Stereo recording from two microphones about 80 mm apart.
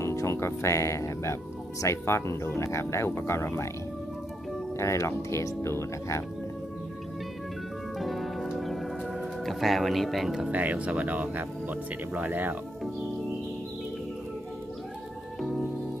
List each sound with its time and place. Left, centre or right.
0.0 s speech: left
4.7 s speech: left
8.0 s music: centre
9.4 s speech: centre
10.5 s speech: centre
15.4 s music: centre